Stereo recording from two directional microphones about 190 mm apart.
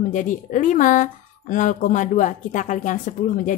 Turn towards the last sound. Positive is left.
turn(degrees=40)  # may be behind; listen again after turning